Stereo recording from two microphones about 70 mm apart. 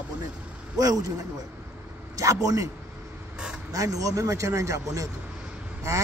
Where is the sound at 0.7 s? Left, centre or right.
Right.